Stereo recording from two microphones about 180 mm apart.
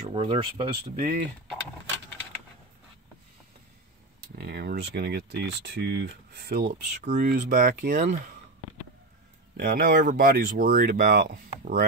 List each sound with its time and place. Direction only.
0.1 s speech: 30° right (ahead or behind)
0.9 s speech: 45° right (ahead or behind)
4.4 s speech: 60° right (ahead or behind)
7.1 s speech: 45° right (ahead or behind)
9.6 s speech: 60° right (ahead or behind)